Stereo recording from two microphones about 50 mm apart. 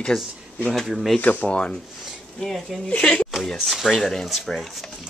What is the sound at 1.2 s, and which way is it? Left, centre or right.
Speech, left.